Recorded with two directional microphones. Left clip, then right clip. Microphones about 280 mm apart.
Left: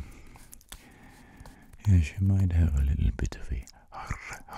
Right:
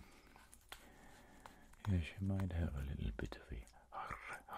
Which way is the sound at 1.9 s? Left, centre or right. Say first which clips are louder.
Left 12 dB; left.